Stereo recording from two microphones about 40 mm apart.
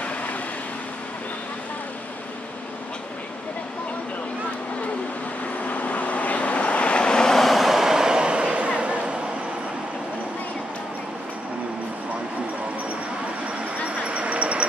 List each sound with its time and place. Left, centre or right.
5.7 s vehicle: left; by 7.3 s centre
7.3 s vehicle: centre; by 9.1 s right
14.0 s dog: right